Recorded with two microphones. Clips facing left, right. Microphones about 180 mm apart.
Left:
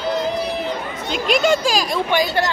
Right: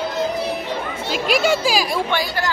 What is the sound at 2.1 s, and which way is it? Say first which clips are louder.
Speech: left 4 dB; 20° left (ahead or behind).